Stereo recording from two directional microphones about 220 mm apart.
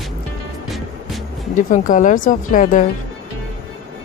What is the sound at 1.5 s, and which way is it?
A woman's voice, 35° left (ahead or behind).